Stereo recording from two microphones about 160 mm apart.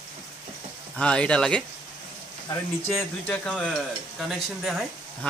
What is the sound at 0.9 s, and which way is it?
Speech, 5° left (ahead or behind).